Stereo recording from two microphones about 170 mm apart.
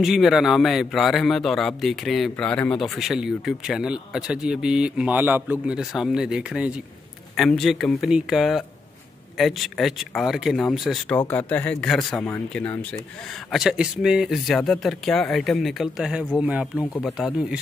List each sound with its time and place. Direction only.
0.0 s a man's voice: centre (ahead or behind)
11.1 s speech: 10° left (ahead or behind)
13.3 s a man's voice: centre (ahead or behind)